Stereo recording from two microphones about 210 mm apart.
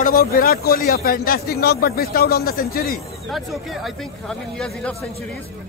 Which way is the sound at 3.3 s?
Centre (ahead or behind).